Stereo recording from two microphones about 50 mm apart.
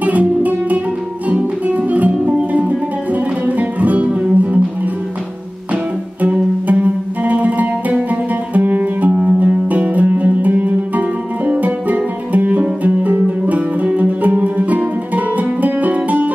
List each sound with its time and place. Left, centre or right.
0.0 s music: right
6.2 s music: right